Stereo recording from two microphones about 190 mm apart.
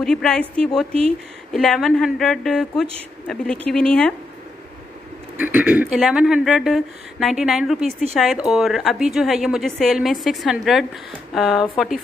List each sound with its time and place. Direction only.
0.0 s speech: 5° left (ahead or behind)
5.4 s speech: 5° right (ahead or behind)